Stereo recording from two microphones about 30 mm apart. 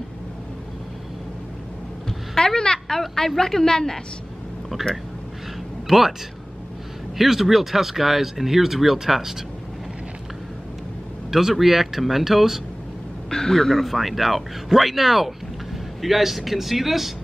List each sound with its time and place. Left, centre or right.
2.0 s a sound: left
3.3 s a woman's voice: centre
5.9 s speech: centre
7.2 s speech: centre
11.2 s speech: centre
13.3 s a woman's voice: centre
13.8 s speech: centre